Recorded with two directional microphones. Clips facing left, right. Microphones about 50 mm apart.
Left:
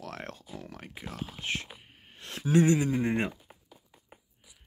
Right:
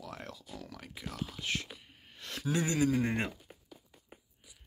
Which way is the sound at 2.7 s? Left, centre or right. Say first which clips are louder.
Left 2 dB; left.